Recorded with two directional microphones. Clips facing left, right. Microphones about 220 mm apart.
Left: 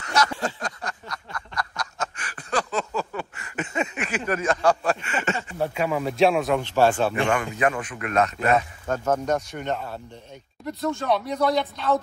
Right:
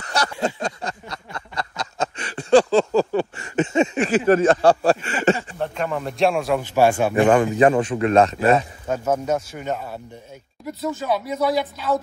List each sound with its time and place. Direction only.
0.0 s a sound: 35° right (ahead or behind)
5.6 s a man's voice: 5° left (ahead or behind); by 7.2 s 10° right (ahead or behind)
7.2 s speech: 30° right (ahead or behind)
8.8 s a man's voice: 10° right (ahead or behind)